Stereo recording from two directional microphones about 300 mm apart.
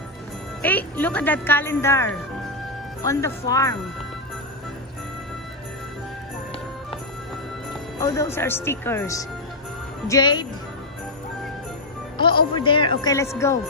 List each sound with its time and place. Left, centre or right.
0.6 s speech: centre
8.0 s speech: centre
12.2 s speech: centre